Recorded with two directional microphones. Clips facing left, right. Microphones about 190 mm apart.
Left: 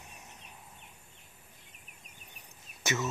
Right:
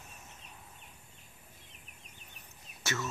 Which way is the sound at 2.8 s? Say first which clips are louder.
Left 4 dB; 20° left (ahead or behind).